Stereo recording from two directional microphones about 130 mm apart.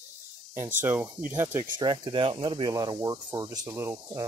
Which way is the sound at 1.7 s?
35° right (ahead or behind).